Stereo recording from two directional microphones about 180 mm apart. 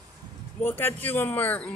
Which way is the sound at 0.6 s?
10° left (ahead or behind).